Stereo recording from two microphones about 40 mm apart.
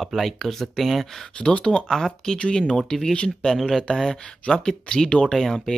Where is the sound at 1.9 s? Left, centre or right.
Centre.